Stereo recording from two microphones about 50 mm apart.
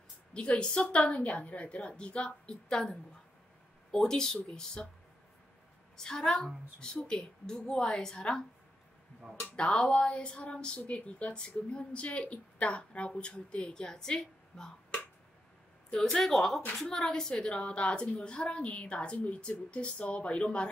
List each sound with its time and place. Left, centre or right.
0.3 s a woman's voice: centre
5.9 s a woman's voice: centre
9.6 s a woman's voice: left